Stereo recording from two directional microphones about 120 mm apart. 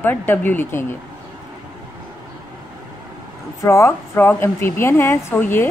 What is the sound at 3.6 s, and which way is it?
A woman's voice, 25° left (ahead or behind).